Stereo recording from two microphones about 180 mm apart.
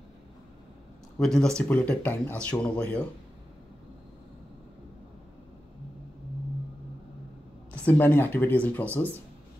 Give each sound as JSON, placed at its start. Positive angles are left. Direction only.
{"t": 1.1, "sound": "speech", "side_deg": 5}
{"t": 7.7, "sound": "speech", "side_deg": 10}